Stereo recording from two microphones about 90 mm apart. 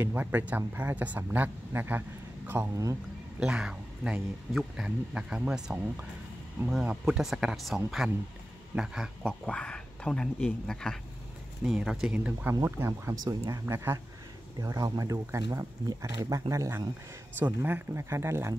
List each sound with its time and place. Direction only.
0.0 s speech: 20° right (ahead or behind)
2.7 s speech: 40° right (ahead or behind)
3.3 s speech: 10° right (ahead or behind)
9.2 s speech: 10° left (ahead or behind)
11.6 s speech: 5° right (ahead or behind)
12.6 s speech: 30° right (ahead or behind)
13.2 s speech: 40° right (ahead or behind)
13.7 s speech: 25° right (ahead or behind)
14.6 s speech: 40° right (ahead or behind)